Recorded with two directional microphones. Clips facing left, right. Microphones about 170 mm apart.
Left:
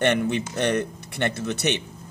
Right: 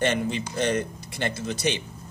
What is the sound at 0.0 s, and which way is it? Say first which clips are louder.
Speech: left 3 dB; 60° left (ahead or behind).